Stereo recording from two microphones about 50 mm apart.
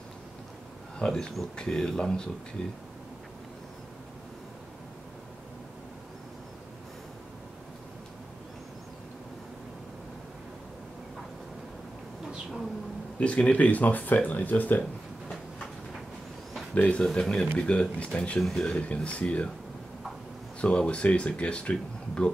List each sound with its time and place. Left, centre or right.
1.0 s speech: centre
13.2 s speech: left
16.7 s speech: left
17.0 s speech: centre
20.6 s speech: left